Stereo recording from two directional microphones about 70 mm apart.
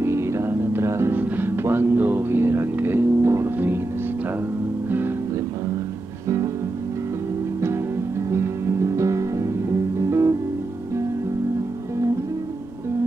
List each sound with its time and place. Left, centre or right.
0.0 s music: right
1.1 s music: right
4.8 s music: right
6.2 s music: right
8.3 s music: right